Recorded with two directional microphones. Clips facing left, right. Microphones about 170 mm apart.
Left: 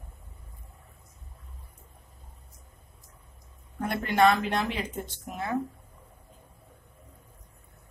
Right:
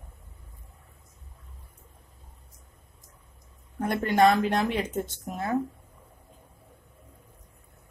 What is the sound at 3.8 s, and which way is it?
Speech, 45° right (ahead or behind).